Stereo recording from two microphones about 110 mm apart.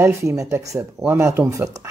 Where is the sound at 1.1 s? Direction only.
15° right (ahead or behind).